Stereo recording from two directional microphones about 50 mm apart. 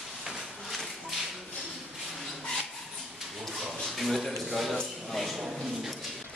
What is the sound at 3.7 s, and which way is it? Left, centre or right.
Speech, centre.